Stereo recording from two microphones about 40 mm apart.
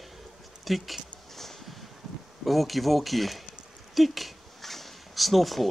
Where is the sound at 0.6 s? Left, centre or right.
Centre.